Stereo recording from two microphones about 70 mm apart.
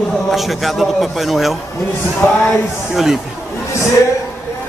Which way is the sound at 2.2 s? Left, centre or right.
Left.